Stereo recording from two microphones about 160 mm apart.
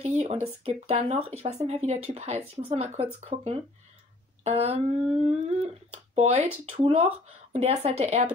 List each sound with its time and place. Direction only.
0.0 s speech: 45° right (ahead or behind)